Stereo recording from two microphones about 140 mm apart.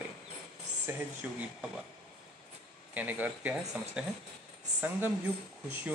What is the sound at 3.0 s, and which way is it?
Speech, 10° right (ahead or behind).